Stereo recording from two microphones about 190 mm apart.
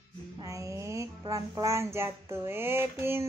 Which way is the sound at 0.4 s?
15° right (ahead or behind).